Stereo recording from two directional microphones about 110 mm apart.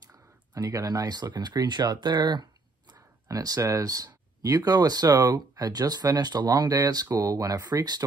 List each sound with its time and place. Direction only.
0.6 s speech: 30° right (ahead or behind)